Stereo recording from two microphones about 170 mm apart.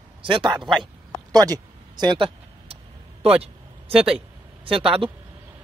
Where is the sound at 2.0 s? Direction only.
30° right (ahead or behind).